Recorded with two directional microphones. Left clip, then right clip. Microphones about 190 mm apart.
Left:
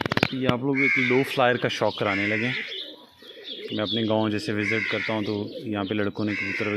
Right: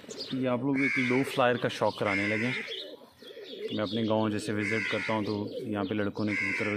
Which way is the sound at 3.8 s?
25° left (ahead or behind).